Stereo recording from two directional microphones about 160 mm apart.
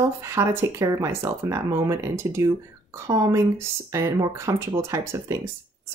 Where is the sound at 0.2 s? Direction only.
20° right (ahead or behind).